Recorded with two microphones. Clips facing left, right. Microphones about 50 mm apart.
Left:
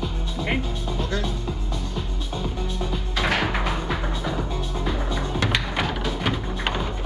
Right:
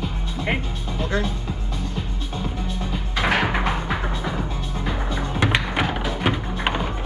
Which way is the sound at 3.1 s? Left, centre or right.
Centre.